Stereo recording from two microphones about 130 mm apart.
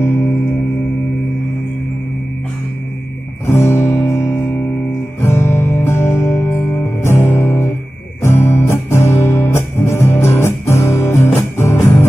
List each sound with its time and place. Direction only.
0.0 s music: 20° left (ahead or behind)
3.4 s music: 20° left (ahead or behind)